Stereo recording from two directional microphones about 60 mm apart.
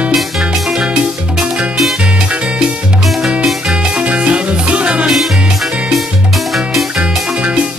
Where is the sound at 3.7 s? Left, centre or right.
Centre.